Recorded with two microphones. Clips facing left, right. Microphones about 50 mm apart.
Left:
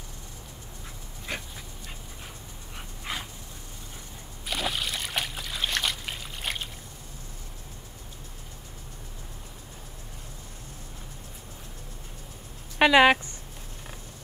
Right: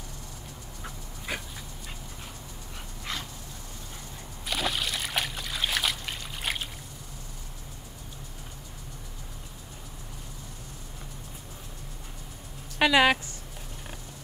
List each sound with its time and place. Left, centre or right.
3.1 s dog: centre
4.5 s trickle: centre
12.7 s speech: centre